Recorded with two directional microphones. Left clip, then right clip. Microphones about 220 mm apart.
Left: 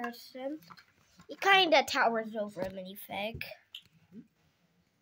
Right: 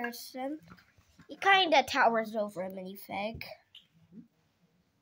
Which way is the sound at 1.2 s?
Centre (ahead or behind).